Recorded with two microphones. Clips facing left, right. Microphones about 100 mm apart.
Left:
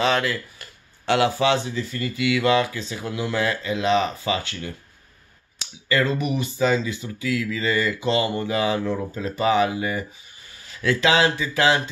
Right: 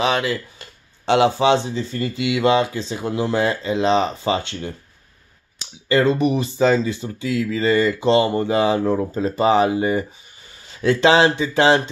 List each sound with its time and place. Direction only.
0.0 s speech: 15° right (ahead or behind)
5.9 s speech: 30° right (ahead or behind)